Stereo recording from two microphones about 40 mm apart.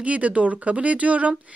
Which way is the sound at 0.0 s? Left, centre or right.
Right.